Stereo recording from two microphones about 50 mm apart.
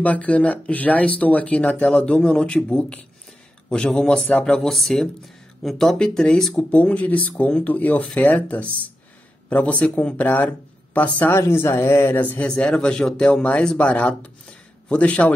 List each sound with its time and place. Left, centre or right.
0.0 s a man's voice: left
4.6 s speech: centre
6.7 s speech: left
11.3 s speech: left
12.2 s speech: left
12.4 s speech: centre